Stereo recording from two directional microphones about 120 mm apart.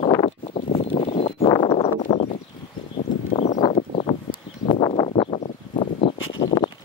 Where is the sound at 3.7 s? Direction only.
55° left (ahead or behind).